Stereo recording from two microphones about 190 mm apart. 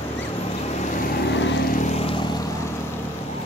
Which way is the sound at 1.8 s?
30° left (ahead or behind).